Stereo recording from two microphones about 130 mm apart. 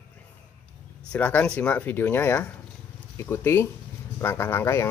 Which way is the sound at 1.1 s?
10° left (ahead or behind).